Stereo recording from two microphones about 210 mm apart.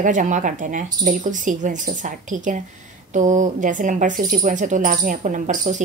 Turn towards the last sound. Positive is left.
turn(degrees=-35)  # may be behind; listen again after turning